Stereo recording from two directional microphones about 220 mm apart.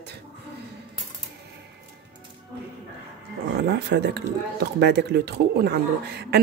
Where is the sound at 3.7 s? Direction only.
50° right (ahead or behind).